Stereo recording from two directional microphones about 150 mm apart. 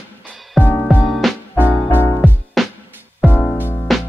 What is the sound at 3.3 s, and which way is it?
Music, 10° left (ahead or behind).